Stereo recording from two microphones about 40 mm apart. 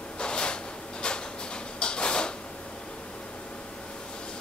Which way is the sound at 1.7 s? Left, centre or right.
Left.